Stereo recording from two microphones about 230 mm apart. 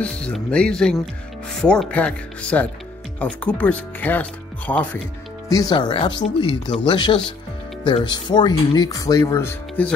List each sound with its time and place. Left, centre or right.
0.0 s speech: centre
5.5 s speech: centre